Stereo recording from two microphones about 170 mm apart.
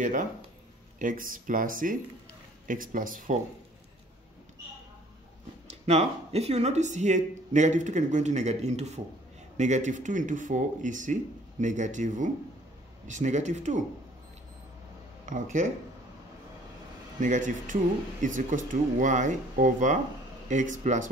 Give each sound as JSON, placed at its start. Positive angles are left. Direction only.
{"t": 0.0, "sound": "speech", "side_deg": -50}
{"t": 5.7, "sound": "speech", "side_deg": -40}
{"t": 15.2, "sound": "speech", "side_deg": -50}
{"t": 17.2, "sound": "speech", "side_deg": -50}